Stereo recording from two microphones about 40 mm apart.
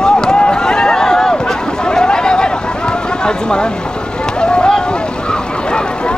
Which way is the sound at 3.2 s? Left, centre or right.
Left.